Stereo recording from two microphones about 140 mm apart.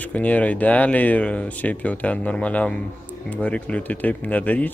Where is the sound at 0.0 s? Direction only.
10° left (ahead or behind).